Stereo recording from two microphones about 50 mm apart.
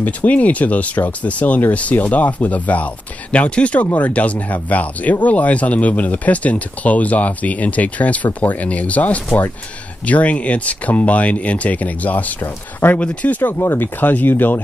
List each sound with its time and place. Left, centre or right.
0.0 s speech: left
13.6 s speech: left